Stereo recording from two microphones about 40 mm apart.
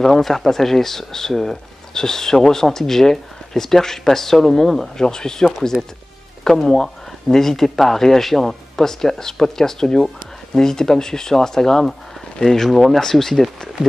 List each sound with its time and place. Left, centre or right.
0.0 s speech: centre
12.6 s speech: centre
13.8 s speech: right